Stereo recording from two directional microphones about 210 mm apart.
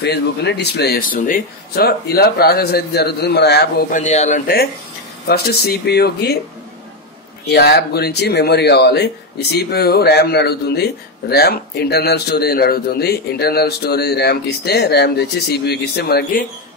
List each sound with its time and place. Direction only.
0.0 s speech: 55° left (ahead or behind)
4.0 s a man's voice: 35° left (ahead or behind); by 6.3 s 50° left (ahead or behind)
7.4 s speech: 50° left (ahead or behind)